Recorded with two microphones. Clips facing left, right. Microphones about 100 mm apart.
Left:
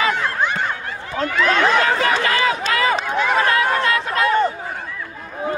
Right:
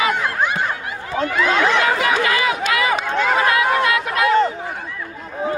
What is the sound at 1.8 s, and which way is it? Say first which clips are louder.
Chatter: even; 35° left (ahead or behind).